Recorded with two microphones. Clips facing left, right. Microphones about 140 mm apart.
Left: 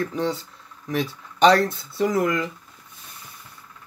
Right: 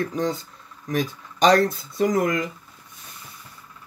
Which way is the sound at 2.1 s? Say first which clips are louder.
Even; 45° right (ahead or behind).